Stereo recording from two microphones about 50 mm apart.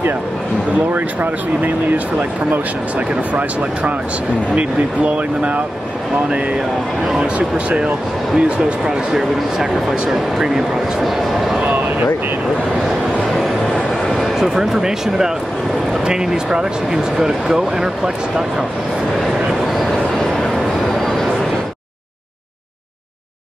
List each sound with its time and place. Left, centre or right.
0.9 s speech: right
4.6 s speech: right
7.2 s speech: right
9.1 s speech: centre
14.0 s a sound: centre
14.4 s speech: centre
19.6 s a sound: centre